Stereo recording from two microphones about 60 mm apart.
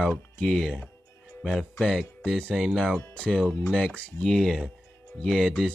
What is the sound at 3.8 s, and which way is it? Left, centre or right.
Speech, centre.